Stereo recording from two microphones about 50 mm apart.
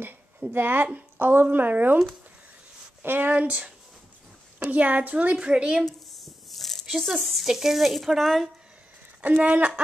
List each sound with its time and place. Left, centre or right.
0.5 s speech: right
3.0 s a woman's voice: right; by 5.9 s centre
5.9 s a sound: centre
7.4 s speech: centre
9.4 s a woman's voice: right